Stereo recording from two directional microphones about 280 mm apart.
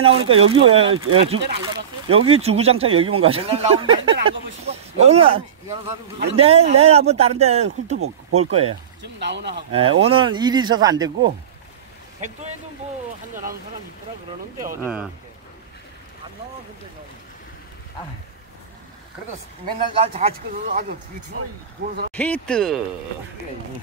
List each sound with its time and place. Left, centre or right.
0.0 s speech: centre
8.0 s speech: right
8.5 s speech: right
9.2 s speech: right
9.7 s speech: centre
14.8 s speech: centre
20.0 s speech: right
22.1 s speech: centre